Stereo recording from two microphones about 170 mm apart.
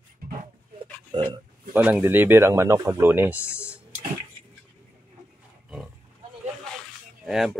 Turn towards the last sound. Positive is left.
turn(degrees=0)  # may be behind; listen again after turning